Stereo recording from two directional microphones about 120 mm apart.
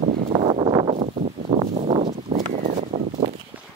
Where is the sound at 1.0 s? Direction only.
70° right (ahead or behind).